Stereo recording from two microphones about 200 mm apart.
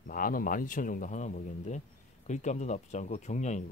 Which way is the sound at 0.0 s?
45° left (ahead or behind).